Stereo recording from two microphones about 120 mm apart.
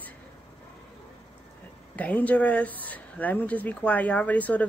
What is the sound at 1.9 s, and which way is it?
Speech, 10° left (ahead or behind).